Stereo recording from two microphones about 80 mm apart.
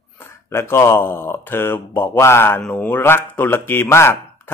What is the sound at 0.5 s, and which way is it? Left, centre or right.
A man's voice, left.